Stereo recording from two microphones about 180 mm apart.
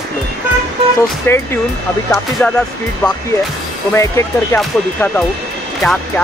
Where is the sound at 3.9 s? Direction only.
15° left (ahead or behind).